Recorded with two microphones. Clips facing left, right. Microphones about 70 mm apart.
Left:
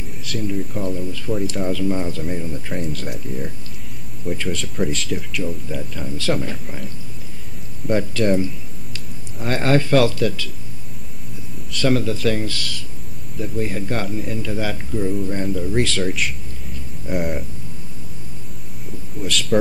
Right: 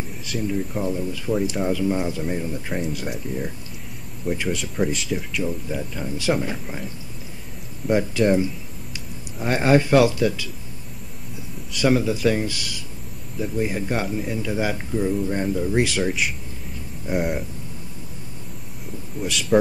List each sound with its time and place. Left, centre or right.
0.3 s speech: centre
7.9 s speech: centre
11.7 s speech: centre
19.2 s speech: centre